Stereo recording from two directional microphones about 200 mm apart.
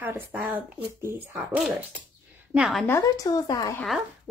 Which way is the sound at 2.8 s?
15° left (ahead or behind).